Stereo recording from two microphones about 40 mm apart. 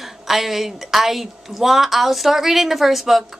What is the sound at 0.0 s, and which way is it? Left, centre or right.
A woman's voice, centre.